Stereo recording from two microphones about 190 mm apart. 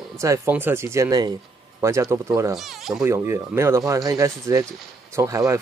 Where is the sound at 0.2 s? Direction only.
15° right (ahead or behind).